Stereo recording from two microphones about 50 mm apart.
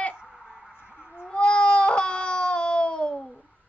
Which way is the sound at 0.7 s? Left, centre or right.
Right.